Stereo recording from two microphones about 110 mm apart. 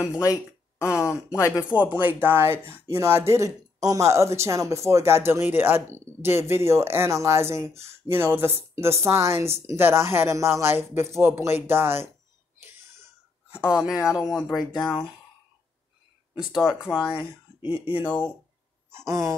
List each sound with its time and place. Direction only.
0.8 s speech: 25° left (ahead or behind)
1.7 s speech: 15° right (ahead or behind)
13.5 s speech: 10° right (ahead or behind)
14.6 s speech: 40° left (ahead or behind)
16.3 s speech: 5° right (ahead or behind)
17.6 s speech: 55° left (ahead or behind)
18.9 s speech: 25° right (ahead or behind)